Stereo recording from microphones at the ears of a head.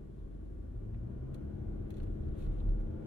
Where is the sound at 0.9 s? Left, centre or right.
Left.